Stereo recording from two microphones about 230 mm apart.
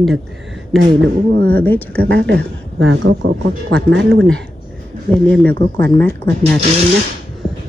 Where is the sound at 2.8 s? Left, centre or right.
Right.